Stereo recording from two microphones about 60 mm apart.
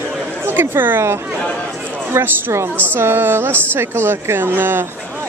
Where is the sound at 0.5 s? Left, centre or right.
Right.